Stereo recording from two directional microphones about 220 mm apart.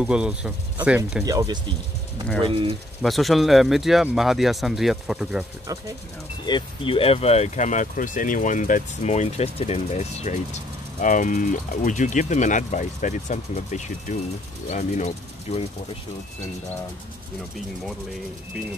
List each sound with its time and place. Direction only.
0.0 s speech: 5° right (ahead or behind)
1.2 s speech: 15° right (ahead or behind)
3.0 s speech: centre (ahead or behind)
5.7 s speech: 15° right (ahead or behind)
6.4 s speech: 20° left (ahead or behind)